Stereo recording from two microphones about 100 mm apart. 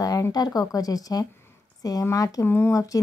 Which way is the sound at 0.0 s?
40° left (ahead or behind).